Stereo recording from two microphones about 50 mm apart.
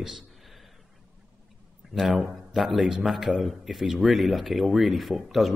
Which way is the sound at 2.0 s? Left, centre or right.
Centre.